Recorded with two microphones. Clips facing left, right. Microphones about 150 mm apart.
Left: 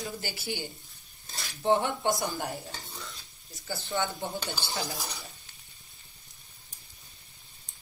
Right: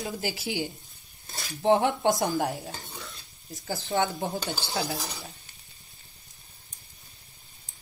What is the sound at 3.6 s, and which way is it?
Speech, 90° right.